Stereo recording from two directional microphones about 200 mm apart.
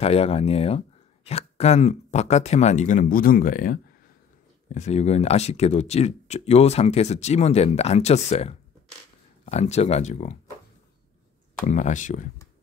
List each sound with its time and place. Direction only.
0.0 s speech: 30° left (ahead or behind)
4.7 s speech: 35° left (ahead or behind)
11.6 s speech: 40° left (ahead or behind)